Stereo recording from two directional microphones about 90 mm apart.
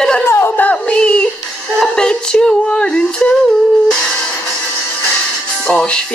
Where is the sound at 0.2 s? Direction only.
30° left (ahead or behind).